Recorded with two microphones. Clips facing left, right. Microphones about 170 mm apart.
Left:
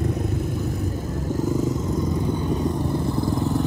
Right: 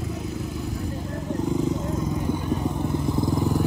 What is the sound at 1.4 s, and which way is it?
Wild animals, centre (ahead or behind).